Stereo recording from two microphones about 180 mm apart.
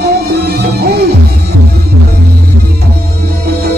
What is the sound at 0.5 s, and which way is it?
Music, 60° right (ahead or behind).